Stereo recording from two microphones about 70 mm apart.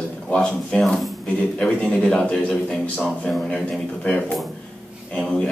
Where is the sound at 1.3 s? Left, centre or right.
Centre.